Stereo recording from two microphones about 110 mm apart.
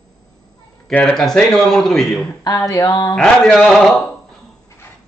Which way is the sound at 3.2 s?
5° left (ahead or behind).